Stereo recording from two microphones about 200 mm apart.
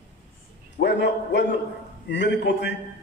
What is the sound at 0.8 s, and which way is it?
A man's voice, 55° left (ahead or behind).